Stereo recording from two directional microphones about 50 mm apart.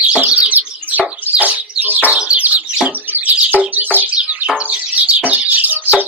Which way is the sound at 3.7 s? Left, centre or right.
Right.